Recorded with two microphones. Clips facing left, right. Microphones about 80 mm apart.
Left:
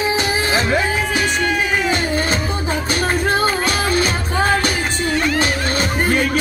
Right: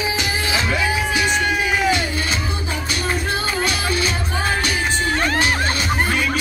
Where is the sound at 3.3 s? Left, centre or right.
Left.